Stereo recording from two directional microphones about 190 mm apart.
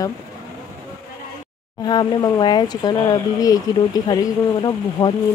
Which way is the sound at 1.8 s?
20° left (ahead or behind).